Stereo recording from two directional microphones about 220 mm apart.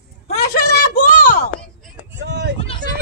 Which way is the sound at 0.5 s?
40° left (ahead or behind).